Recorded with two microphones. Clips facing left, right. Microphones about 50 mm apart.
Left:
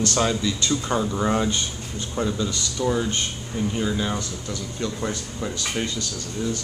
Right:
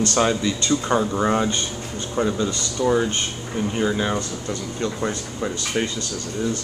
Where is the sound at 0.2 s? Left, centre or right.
Centre.